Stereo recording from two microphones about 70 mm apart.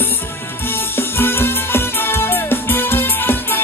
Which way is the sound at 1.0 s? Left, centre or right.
Left.